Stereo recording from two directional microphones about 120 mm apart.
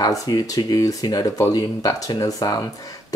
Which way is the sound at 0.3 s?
30° left (ahead or behind).